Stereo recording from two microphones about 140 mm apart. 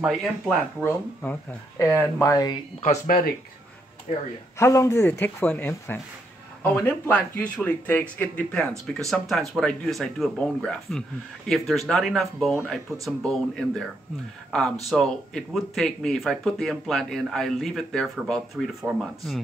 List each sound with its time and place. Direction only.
0.0 s speech: centre (ahead or behind)
0.8 s speech: 15° left (ahead or behind)
3.1 s speech: 90° left
4.6 s speech: 20° left (ahead or behind); by 19.4 s centre (ahead or behind)